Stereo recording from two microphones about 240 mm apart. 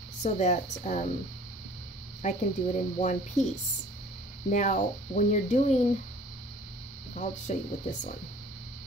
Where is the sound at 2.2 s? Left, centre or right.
Left.